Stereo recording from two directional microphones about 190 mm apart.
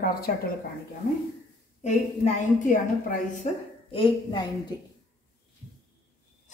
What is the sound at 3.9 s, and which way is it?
Speech, 25° left (ahead or behind).